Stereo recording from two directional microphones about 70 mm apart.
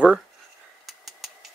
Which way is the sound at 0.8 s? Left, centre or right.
Centre.